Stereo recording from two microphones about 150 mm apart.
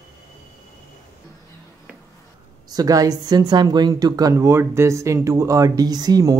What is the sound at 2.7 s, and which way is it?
Speech, 25° right (ahead or behind).